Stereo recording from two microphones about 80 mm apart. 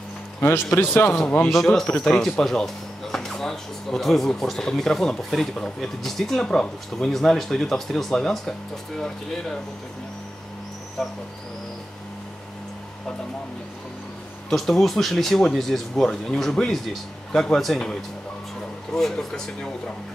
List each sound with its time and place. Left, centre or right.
0.7 s speech: left
1.5 s speech: centre
11.0 s speech: centre
14.5 s speech: centre
18.9 s speech: centre